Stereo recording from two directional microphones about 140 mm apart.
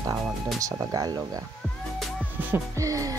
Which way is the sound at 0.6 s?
25° right (ahead or behind).